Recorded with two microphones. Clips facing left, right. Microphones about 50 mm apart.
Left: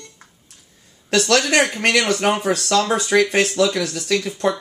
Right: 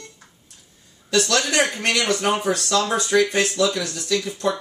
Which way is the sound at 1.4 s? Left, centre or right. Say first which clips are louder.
Left 3 dB; left.